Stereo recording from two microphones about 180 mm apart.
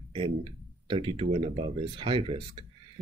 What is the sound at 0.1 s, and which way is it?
Speech, 30° right (ahead or behind).